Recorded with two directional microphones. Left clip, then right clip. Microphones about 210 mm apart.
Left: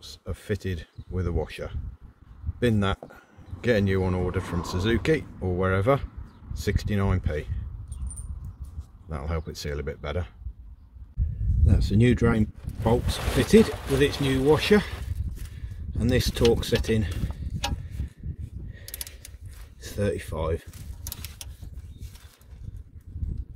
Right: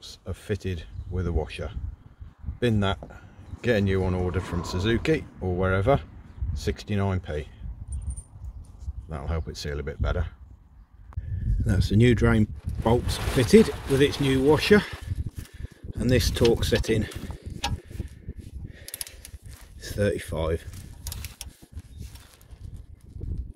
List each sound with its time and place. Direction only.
0.0 s speech: 5° right (ahead or behind)
9.1 s speech: centre (ahead or behind)
11.6 s speech: 20° right (ahead or behind)
18.7 s mechanisms: 20° right (ahead or behind)
19.8 s speech: 20° right (ahead or behind)